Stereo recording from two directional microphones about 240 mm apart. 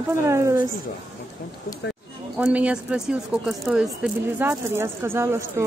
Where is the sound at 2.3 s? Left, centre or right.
Centre.